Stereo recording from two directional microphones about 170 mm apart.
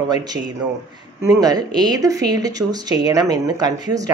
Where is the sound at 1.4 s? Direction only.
25° right (ahead or behind).